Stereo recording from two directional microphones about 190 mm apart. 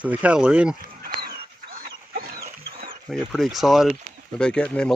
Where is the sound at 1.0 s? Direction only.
50° right (ahead or behind).